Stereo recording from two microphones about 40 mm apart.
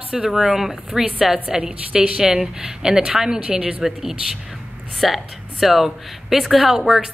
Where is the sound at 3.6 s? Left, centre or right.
Right.